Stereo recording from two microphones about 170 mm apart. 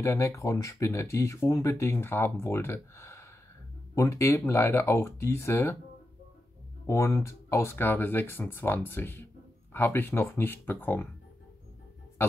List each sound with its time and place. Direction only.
0.0 s speech: 15° left (ahead or behind)
6.9 s speech: 15° left (ahead or behind)